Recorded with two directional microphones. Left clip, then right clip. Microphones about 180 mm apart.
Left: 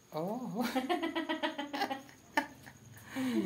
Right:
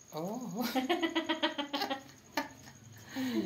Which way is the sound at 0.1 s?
5° left (ahead or behind).